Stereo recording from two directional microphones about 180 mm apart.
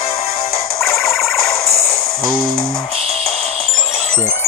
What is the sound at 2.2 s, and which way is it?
Music, 50° left (ahead or behind).